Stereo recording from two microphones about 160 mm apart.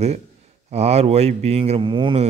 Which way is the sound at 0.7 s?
40° right (ahead or behind).